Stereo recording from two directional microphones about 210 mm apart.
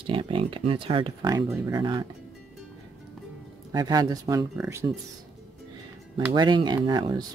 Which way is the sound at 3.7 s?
20° right (ahead or behind).